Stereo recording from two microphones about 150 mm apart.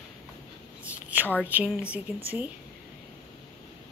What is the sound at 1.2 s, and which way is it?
Speech, 10° left (ahead or behind).